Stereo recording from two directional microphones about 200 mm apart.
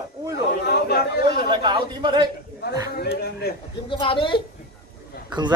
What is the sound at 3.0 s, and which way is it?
Speech, 50° left (ahead or behind).